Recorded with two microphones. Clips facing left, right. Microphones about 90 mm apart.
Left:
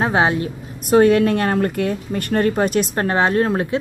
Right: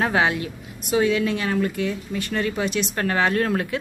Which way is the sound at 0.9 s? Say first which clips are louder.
Left 7 dB; 55° left (ahead or behind).